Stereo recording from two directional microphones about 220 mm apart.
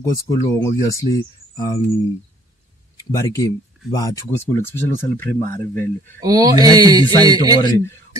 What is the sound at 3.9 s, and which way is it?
Speech, 15° left (ahead or behind).